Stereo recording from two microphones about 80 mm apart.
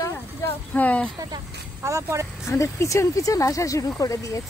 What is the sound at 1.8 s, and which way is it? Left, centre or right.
Speech, right.